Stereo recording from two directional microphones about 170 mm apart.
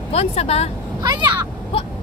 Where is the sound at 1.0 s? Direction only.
25° right (ahead or behind).